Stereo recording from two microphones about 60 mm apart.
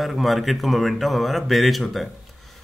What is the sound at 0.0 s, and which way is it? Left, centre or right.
A man's voice, centre.